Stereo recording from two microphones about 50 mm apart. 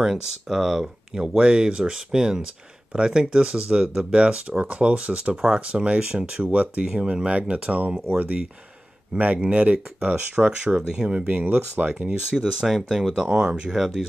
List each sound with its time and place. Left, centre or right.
0.0 s speech: centre; by 5.3 s right
5.3 s speech: centre
5.7 s speech: right
6.8 s speech: centre
9.2 s speech: right
11.2 s speech: right; by 14.0 s centre